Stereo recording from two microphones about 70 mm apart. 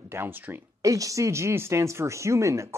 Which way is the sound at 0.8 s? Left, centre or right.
Right.